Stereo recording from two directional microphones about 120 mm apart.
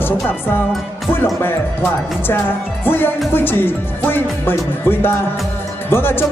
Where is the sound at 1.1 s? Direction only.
20° left (ahead or behind).